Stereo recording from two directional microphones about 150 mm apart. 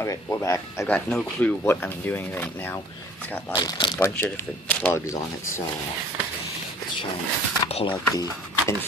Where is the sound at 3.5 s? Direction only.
30° left (ahead or behind).